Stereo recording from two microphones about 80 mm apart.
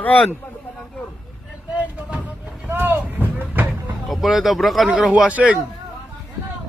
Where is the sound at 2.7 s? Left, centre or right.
Right.